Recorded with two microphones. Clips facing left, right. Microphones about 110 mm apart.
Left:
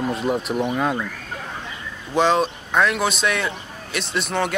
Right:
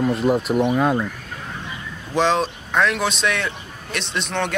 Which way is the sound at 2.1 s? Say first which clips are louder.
Left 1 dB; centre (ahead or behind).